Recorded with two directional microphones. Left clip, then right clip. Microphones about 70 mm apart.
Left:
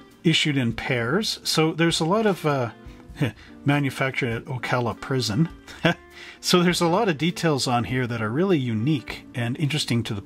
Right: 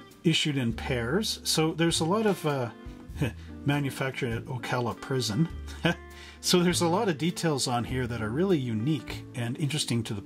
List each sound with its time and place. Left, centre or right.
0.2 s speech: left
1.9 s speech: left
2.2 s speech: left
5.0 s speech: left
6.4 s speech: left